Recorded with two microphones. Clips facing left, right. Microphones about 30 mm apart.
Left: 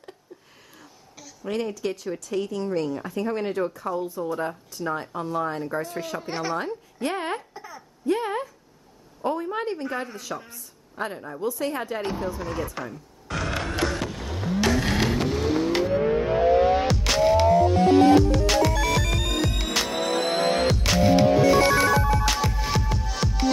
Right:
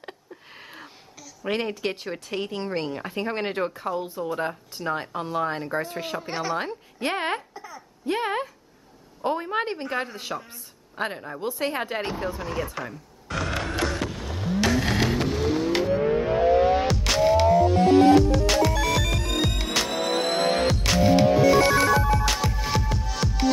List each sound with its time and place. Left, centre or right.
1.4 s a woman's voice: right
3.8 s a woman's voice: right
6.1 s a woman's voice: centre
6.5 s a woman's voice: right
7.5 s a sound: centre
8.1 s a woman's voice: right
13.3 s a sound: centre
16.0 s music: centre